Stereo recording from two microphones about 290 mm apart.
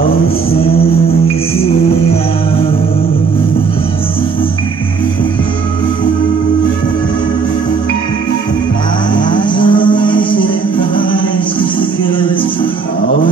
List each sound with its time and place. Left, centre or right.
9.3 s cattle: centre
10.0 s music: centre